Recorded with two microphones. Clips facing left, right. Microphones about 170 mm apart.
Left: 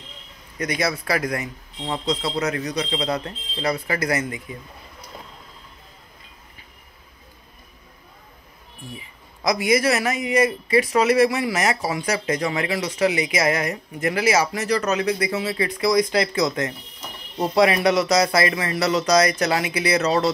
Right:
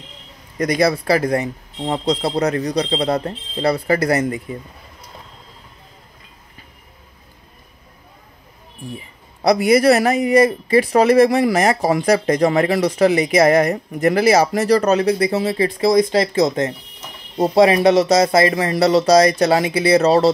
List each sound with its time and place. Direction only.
0.6 s speech: 35° right (ahead or behind)
9.4 s speech: 35° right (ahead or behind)